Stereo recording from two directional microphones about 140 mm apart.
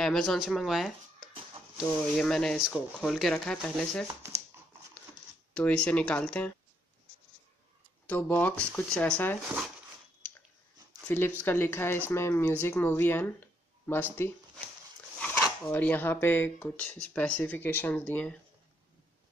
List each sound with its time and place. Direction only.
0.0 s speech: 5° left (ahead or behind)
5.5 s speech: 10° left (ahead or behind)
8.1 s speech: 10° left (ahead or behind)
11.1 s speech: 15° left (ahead or behind)
15.1 s speech: 10° left (ahead or behind)